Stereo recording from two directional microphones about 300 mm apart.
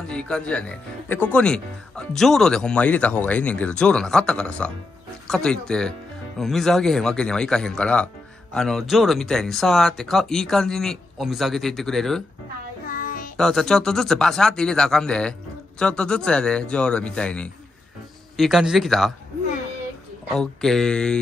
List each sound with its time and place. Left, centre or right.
0.1 s speech: centre
12.9 s music: left
13.4 s speech: centre
20.3 s speech: centre